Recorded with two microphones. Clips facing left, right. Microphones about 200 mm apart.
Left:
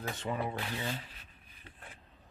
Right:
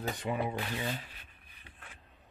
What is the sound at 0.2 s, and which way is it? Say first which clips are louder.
Speech: even; 15° right (ahead or behind).